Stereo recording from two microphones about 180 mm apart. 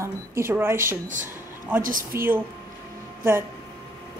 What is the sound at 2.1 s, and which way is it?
Speech, 10° right (ahead or behind).